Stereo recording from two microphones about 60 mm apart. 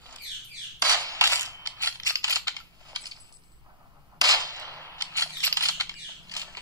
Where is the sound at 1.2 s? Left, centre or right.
Right.